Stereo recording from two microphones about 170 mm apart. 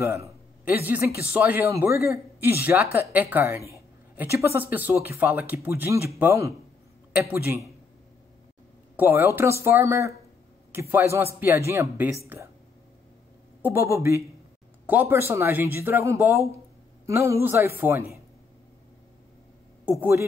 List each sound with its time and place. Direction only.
0.0 s a man's voice: 15° right (ahead or behind)
8.9 s a man's voice: 10° right (ahead or behind)
13.6 s a man's voice: 15° right (ahead or behind)
19.8 s speech: 10° right (ahead or behind)